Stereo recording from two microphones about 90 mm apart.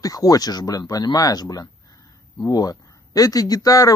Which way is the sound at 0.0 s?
45° left (ahead or behind).